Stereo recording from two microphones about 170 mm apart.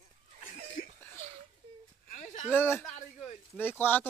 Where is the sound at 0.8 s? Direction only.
90° left.